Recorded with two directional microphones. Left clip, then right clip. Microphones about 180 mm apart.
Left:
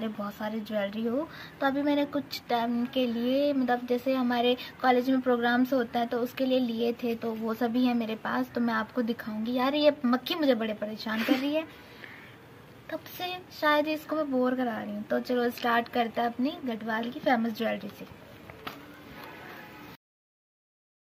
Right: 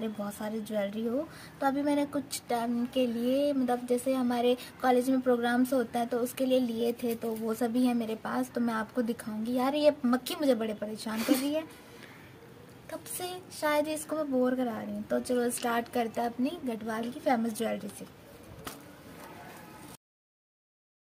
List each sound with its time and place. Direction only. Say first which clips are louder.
0.0 s a woman's voice: left 2 dB; 20° right (ahead or behind)
13.2 s a woman's voice: left 4 dB; 25° right (ahead or behind)